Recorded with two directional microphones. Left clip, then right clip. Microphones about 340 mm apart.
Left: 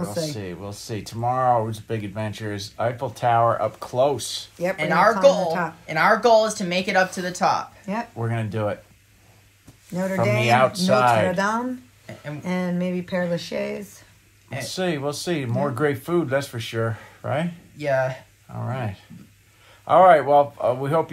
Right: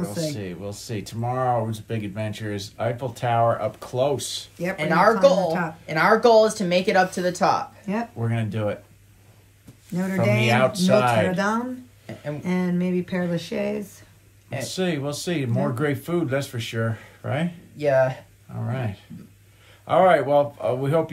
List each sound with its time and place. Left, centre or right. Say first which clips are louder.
0.0 s speech: left 1 dB; centre
4.7 s speech: even; centre
5.1 s speech: left 1 dB; centre
5.9 s speech: even; centre
8.2 s speech: left 1 dB; centre
9.9 s speech: left 1 dB; centre
11.3 s speech: left 1 dB; centre
14.7 s speech: left 2 dB; centre
17.7 s speech: right 3 dB; centre
18.5 s speech: left 1 dB; centre